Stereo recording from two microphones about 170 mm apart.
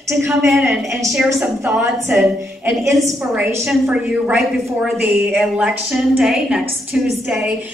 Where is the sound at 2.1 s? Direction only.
10° right (ahead or behind).